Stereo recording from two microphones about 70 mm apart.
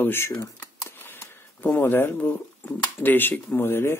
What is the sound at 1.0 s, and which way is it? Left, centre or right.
Sniff, left.